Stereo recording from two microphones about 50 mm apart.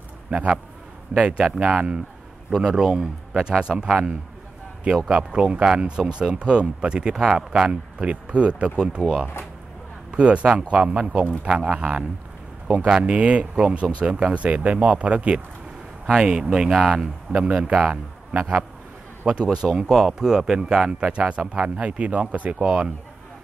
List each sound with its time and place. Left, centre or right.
0.3 s a man's voice: right
16.7 s speech: centre
17.3 s speech: centre
18.3 s a man's voice: right
19.7 s speech: centre
21.6 s speech: right